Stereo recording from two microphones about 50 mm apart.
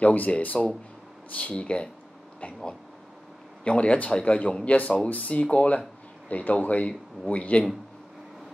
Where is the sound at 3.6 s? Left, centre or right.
Left.